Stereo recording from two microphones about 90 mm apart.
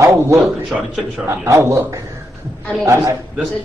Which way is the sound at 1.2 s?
30° right (ahead or behind).